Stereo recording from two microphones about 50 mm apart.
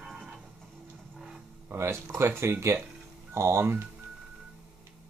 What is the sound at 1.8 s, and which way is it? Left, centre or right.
Speech, right.